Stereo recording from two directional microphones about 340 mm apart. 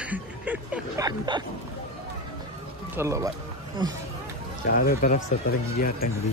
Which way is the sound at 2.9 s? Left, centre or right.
Centre.